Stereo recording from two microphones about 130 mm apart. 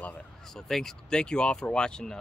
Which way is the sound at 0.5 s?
5° left (ahead or behind).